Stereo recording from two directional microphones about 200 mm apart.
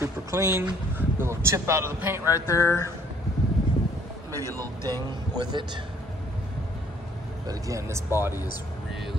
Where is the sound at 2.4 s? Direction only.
15° left (ahead or behind).